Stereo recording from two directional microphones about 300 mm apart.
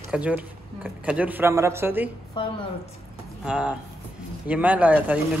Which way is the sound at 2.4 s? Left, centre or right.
Centre.